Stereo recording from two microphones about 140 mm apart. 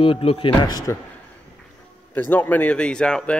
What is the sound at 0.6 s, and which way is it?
Speech, 25° left (ahead or behind).